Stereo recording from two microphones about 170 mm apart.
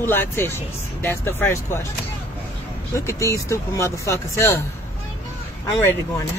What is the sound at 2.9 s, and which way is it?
Speech, 15° left (ahead or behind).